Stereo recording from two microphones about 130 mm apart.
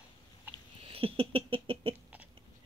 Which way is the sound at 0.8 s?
45° right (ahead or behind).